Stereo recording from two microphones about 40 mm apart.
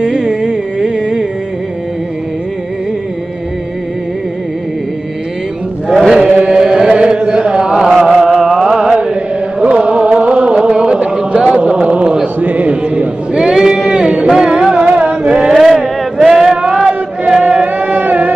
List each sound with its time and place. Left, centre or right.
0.0 s music: centre
5.9 s chant: centre
6.3 s carnatic music: right
6.6 s chant: centre
8.0 s chant: centre
8.6 s mantra: centre
9.0 s chant: right
11.5 s a sound: right
12.4 s chant: right
13.7 s music: right
14.9 s male singing: right
17.7 s a sound: right